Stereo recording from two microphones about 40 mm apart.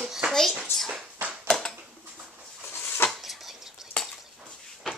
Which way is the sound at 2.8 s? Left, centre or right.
Left.